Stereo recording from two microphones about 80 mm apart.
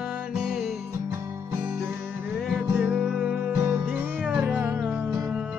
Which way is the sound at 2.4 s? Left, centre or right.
Centre.